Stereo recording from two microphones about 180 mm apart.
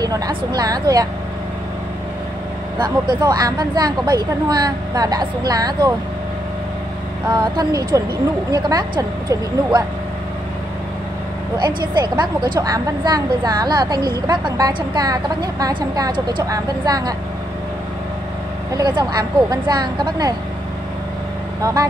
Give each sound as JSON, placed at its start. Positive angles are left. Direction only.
{"t": 0.0, "sound": "a woman's voice", "side_deg": -20}
{"t": 2.8, "sound": "a woman's voice", "side_deg": -20}
{"t": 7.2, "sound": "a woman's voice", "side_deg": -20}
{"t": 11.5, "sound": "a woman's voice", "side_deg": -25}
{"t": 18.8, "sound": "a woman's voice", "side_deg": -25}